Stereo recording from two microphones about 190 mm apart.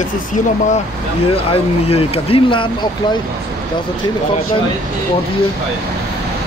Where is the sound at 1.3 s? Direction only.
30° left (ahead or behind).